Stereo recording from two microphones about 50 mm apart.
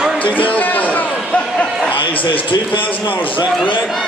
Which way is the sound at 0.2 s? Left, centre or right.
Left.